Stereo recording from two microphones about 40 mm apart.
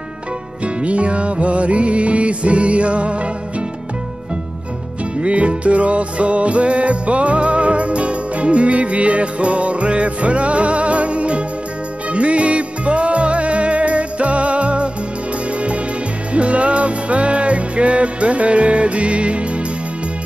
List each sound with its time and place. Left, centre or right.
0.7 s music: right
5.1 s music: right